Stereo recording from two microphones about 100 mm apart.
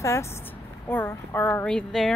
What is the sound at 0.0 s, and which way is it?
Speech, 30° left (ahead or behind).